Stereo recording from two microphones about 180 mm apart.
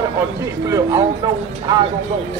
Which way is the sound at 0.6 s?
15° right (ahead or behind).